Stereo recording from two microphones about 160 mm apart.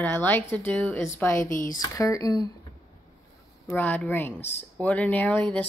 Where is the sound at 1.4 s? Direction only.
55° left (ahead or behind).